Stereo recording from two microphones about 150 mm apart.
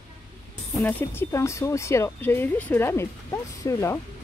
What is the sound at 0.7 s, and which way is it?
Speech, 10° left (ahead or behind).